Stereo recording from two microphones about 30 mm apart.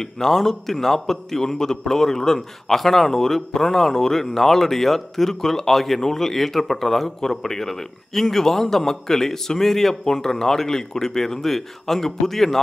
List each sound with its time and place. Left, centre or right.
0.0 s a man's voice: centre